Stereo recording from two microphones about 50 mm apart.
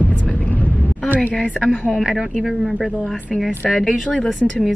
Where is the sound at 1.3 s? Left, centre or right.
Centre.